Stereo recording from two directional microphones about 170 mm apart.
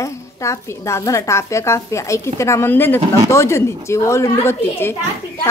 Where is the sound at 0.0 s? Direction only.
20° left (ahead or behind).